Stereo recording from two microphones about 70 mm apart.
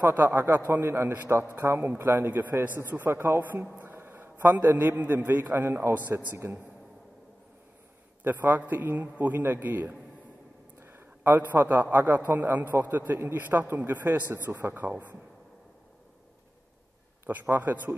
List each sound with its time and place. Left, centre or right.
0.0 s a man's voice: right
6.1 s a man's voice: right
8.2 s a man's voice: right
17.3 s a man's voice: right